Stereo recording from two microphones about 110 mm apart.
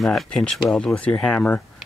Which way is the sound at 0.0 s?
5° left (ahead or behind).